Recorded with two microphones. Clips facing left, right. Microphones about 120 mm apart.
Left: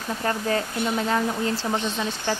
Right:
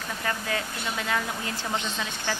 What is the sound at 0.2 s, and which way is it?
Speech, 35° left (ahead or behind).